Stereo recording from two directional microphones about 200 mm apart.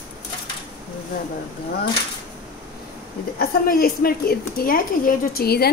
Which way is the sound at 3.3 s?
45° left (ahead or behind).